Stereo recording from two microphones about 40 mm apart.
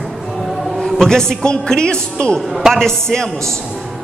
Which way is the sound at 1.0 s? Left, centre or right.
Centre.